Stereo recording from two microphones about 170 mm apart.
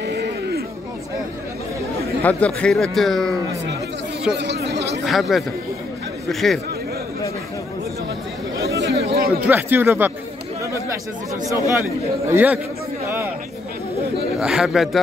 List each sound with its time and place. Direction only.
0.0 s a sound: 75° right (ahead or behind)
2.2 s a man's voice: 5° left (ahead or behind)
4.3 s a sound: 90° right
5.0 s a man's voice: centre (ahead or behind)
8.5 s chatter: 80° right
9.0 s chatter: 65° right (ahead or behind)
9.5 s speech: 10° right (ahead or behind)
11.5 s speech: 15° right (ahead or behind)
14.4 s a man's voice: 5° right (ahead or behind)